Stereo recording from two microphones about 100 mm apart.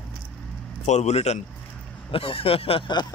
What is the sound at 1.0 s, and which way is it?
Speech, 90° left.